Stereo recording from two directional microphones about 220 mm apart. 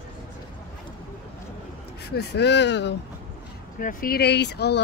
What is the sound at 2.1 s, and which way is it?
Speech, 50° left (ahead or behind).